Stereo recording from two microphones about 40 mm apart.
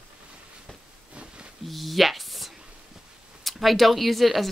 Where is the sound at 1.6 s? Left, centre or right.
Centre.